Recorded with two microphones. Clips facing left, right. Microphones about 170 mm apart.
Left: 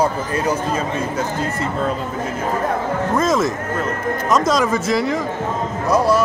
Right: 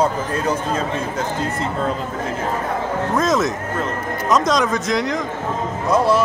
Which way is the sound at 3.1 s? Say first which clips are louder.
Left 1 dB; centre (ahead or behind).